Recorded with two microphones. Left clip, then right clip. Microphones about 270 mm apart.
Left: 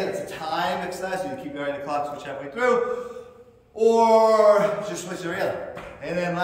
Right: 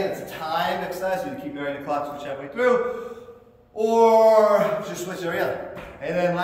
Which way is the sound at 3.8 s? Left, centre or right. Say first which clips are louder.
Even; centre.